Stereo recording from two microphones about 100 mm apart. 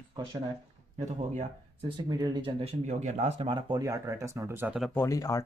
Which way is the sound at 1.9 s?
45° right (ahead or behind).